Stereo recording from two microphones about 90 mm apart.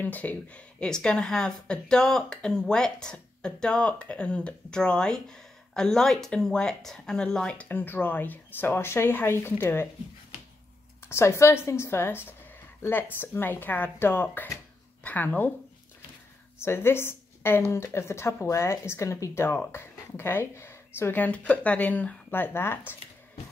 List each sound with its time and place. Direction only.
0.0 s speech: 20° left (ahead or behind)
11.1 s a woman's voice: 30° left (ahead or behind)
16.5 s a woman's voice: 25° left (ahead or behind)